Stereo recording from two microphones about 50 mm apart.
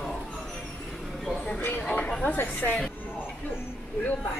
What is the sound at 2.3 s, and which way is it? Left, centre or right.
Speech, left.